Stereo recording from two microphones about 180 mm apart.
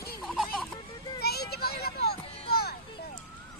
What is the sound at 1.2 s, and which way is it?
Children playing, 60° left (ahead or behind).